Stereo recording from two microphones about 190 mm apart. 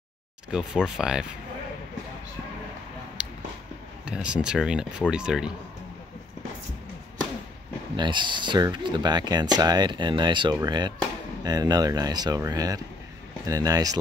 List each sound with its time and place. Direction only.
0.5 s speech: 5° right (ahead or behind)
3.2 s a sound: 5° right (ahead or behind)
4.0 s speech: 5° right (ahead or behind)
7.9 s speech: 25° right (ahead or behind)